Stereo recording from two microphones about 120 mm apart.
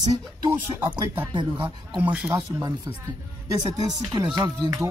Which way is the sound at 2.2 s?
25° right (ahead or behind).